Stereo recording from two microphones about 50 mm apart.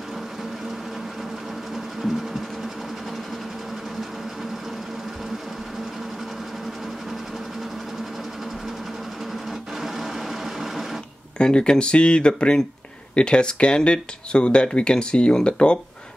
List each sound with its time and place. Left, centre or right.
2.0 s sewing machine: centre
9.8 s printer: centre
11.3 s speech: centre